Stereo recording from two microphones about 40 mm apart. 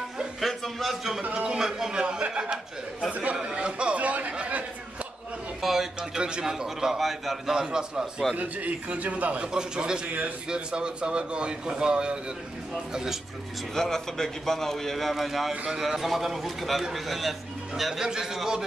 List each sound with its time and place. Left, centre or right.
0.4 s a sound: centre
1.3 s a man's voice: right
5.6 s a man's voice: centre
6.1 s a man's voice: right
7.0 s a man's voice: centre
7.5 s a man's voice: centre
8.4 s a man's voice: right
9.4 s a man's voice: right
13.7 s a man's voice: centre
18.0 s a man's voice: centre